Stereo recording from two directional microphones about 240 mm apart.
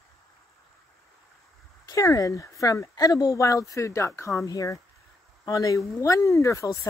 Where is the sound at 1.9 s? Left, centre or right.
Centre.